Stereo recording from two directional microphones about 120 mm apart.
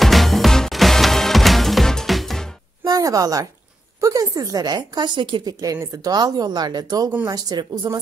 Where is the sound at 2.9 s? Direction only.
30° right (ahead or behind).